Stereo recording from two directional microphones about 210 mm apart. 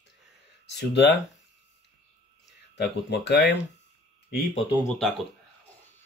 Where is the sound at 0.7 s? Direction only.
55° left (ahead or behind).